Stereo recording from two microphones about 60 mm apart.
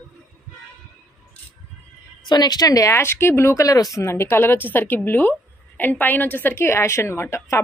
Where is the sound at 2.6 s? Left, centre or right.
Left.